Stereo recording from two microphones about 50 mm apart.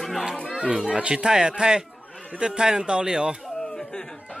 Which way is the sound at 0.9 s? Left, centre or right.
Right.